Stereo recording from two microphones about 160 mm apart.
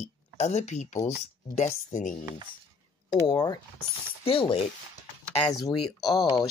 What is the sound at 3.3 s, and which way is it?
Speech, 25° left (ahead or behind).